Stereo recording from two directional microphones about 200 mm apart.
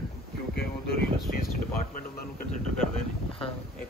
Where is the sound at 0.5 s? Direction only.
50° left (ahead or behind).